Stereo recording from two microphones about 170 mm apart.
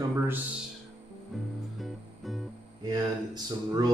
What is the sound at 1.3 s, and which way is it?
Music, centre (ahead or behind).